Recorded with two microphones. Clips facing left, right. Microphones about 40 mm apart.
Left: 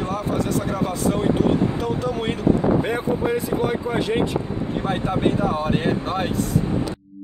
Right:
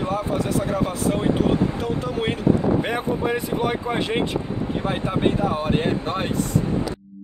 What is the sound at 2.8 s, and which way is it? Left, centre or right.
Speech, right.